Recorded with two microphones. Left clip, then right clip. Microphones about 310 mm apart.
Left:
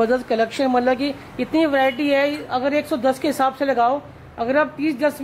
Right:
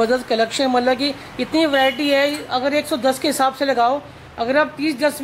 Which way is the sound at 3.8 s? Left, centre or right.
Centre.